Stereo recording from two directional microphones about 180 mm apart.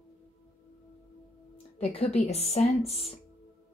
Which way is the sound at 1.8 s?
35° left (ahead or behind).